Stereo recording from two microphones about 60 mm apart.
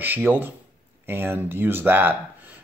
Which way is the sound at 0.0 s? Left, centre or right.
Right.